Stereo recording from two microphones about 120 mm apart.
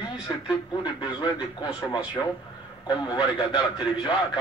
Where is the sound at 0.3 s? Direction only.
30° left (ahead or behind).